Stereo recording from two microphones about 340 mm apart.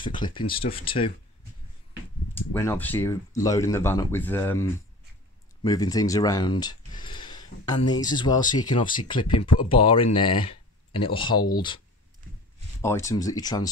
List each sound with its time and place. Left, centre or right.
0.0 s speech: centre
2.3 s speech: centre
12.8 s speech: centre